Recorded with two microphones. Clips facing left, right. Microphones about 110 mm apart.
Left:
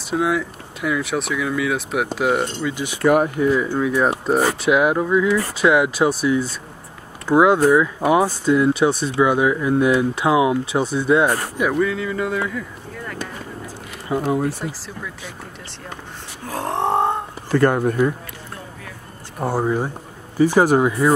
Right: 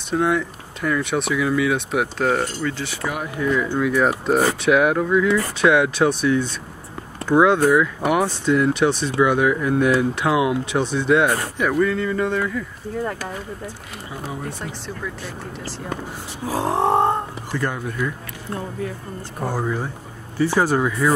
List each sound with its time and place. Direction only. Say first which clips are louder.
0.1 s speech: even; centre (ahead or behind)
3.0 s speech: left 15 dB; 55° left (ahead or behind)
3.5 s speech: left 1 dB; 10° left (ahead or behind)
14.1 s speech: left 11 dB; 90° left
16.4 s speech: right 2 dB; 5° right (ahead or behind)
17.5 s speech: left 11 dB; 60° left (ahead or behind)
19.4 s speech: left 4 dB; 20° left (ahead or behind)